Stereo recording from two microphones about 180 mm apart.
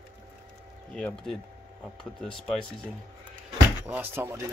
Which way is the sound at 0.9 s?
5° left (ahead or behind).